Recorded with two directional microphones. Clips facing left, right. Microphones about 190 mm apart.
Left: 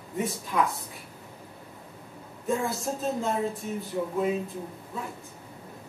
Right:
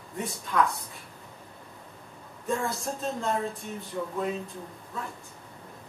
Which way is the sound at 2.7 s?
Centre (ahead or behind).